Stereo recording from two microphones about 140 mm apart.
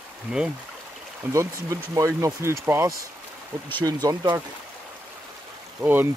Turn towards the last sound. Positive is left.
turn(degrees=-15)  # may be behind; listen again after turning